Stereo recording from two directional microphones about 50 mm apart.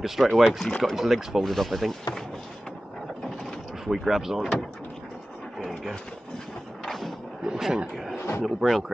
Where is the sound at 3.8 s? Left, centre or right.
Centre.